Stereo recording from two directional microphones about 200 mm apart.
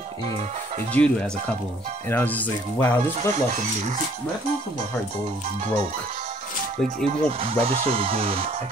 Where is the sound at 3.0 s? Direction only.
35° right (ahead or behind).